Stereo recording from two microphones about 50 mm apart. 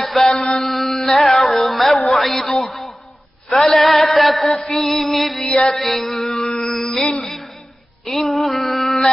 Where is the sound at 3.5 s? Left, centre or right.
Centre.